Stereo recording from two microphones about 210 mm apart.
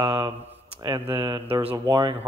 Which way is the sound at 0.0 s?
15° right (ahead or behind).